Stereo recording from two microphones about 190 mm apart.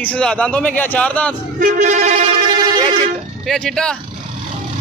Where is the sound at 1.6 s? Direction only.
45° right (ahead or behind).